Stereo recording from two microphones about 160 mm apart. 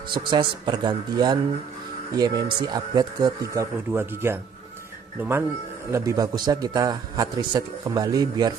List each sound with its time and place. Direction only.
0.1 s a man's voice: 30° right (ahead or behind); by 4.4 s 15° right (ahead or behind)
5.9 s a man's voice: 20° right (ahead or behind)